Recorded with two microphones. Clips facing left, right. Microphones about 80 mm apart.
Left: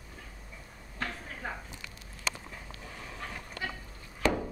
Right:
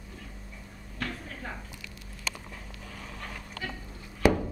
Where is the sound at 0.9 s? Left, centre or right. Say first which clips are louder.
Right 1 dB; centre.